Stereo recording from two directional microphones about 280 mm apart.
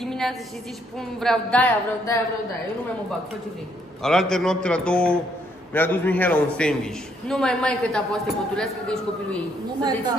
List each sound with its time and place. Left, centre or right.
0.0 s a sound: centre
0.9 s a man's voice: centre
4.0 s a man's voice: centre
9.8 s a woman's voice: centre